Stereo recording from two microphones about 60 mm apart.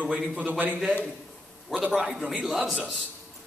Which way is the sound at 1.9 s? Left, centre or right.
Centre.